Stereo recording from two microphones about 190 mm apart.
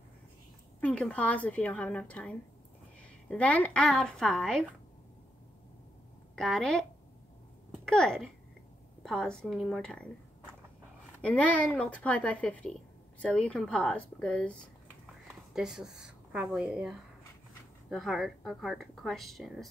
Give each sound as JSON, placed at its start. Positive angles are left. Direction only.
{"t": 0.7, "sound": "a woman's voice", "side_deg": 5}
{"t": 6.3, "sound": "a woman's voice", "side_deg": 0}